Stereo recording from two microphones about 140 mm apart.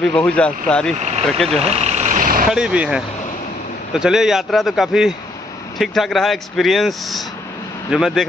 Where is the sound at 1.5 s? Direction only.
55° right (ahead or behind); by 2.5 s 75° right (ahead or behind).